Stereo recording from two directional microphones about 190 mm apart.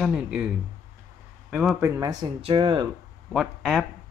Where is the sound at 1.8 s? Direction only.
20° right (ahead or behind).